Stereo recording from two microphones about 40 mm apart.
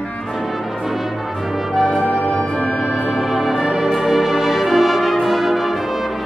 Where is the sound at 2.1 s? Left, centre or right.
Centre.